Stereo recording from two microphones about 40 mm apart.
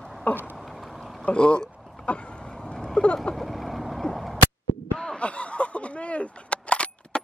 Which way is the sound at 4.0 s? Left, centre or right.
Centre.